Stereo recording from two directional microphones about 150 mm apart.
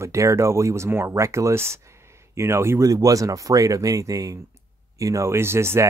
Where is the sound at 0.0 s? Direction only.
20° right (ahead or behind).